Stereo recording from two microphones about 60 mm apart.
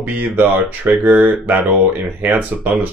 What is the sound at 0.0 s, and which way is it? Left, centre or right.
Speech, right.